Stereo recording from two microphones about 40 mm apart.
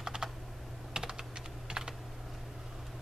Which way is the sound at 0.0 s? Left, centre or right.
Centre.